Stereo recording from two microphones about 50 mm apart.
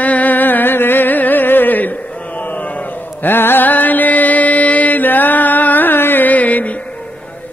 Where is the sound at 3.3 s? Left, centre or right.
Left.